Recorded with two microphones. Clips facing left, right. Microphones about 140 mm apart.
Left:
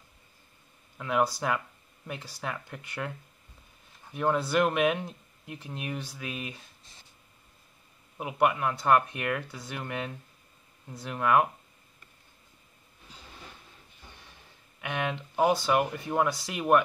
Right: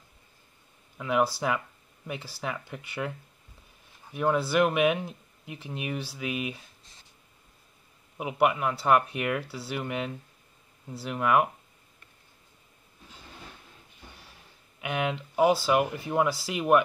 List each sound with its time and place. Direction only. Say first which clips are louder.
0.9 s speech: right 1 dB; 5° right (ahead or behind)
4.1 s speech: right 1 dB; 5° right (ahead or behind)
8.2 s speech: right 1 dB; 5° right (ahead or behind)
14.8 s speech: right 2 dB; 10° right (ahead or behind)